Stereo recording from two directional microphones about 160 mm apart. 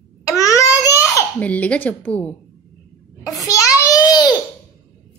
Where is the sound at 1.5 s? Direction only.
10° left (ahead or behind).